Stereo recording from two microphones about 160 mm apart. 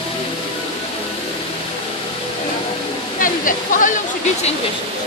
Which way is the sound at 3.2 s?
55° left (ahead or behind).